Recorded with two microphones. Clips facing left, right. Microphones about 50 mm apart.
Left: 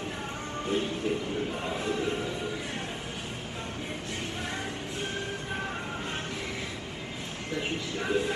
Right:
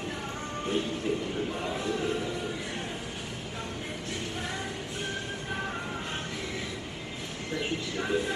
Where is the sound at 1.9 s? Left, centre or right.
Left.